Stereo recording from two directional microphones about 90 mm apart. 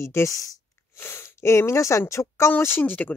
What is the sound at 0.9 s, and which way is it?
Speech, 25° left (ahead or behind).